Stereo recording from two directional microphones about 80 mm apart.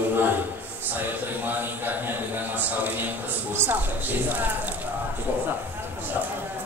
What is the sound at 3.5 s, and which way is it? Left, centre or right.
Speech, right.